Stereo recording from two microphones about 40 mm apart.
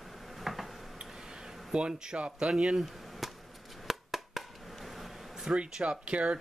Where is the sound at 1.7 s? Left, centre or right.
Right.